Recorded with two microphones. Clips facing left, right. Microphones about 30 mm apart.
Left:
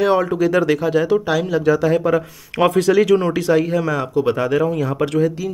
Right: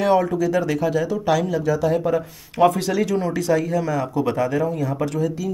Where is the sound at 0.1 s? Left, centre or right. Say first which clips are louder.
Left 1 dB; left.